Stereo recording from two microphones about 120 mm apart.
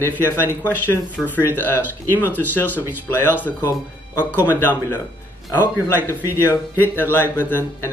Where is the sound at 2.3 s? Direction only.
15° left (ahead or behind).